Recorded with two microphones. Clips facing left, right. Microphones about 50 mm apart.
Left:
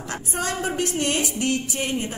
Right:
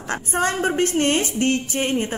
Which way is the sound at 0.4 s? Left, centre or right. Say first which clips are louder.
Right 5 dB; right.